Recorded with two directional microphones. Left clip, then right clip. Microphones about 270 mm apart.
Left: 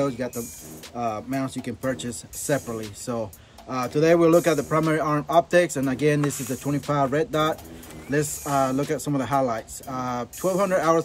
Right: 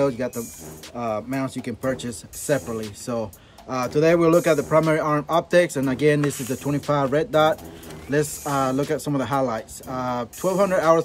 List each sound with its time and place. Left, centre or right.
0.0 s speech: centre